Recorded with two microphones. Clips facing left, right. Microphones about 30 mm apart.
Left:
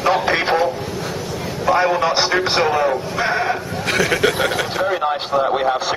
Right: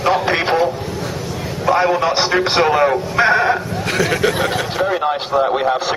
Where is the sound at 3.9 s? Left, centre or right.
Centre.